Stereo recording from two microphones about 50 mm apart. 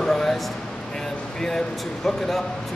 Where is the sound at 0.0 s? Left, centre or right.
Centre.